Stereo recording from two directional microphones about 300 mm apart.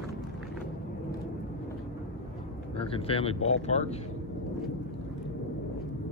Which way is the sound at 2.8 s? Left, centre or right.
Centre.